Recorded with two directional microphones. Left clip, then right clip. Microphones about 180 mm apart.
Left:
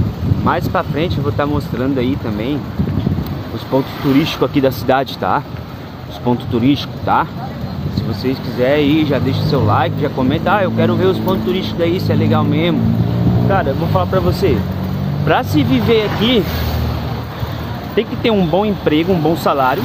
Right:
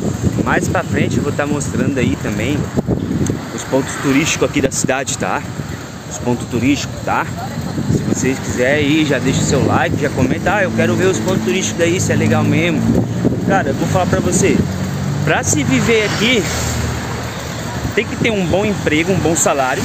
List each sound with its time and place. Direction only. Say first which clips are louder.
0.5 s speech: left 1 dB; 10° left (ahead or behind)
4.1 s speech: even; 15° left (ahead or behind)
8.3 s speech: left 1 dB; centre (ahead or behind)
15.2 s speech: left 2 dB; 10° left (ahead or behind)
17.9 s speech: left 2 dB; 15° left (ahead or behind)